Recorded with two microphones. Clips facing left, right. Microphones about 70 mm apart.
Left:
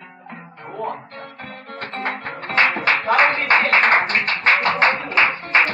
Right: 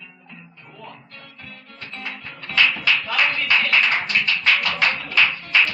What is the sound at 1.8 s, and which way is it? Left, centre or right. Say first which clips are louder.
Music: left 8 dB; left.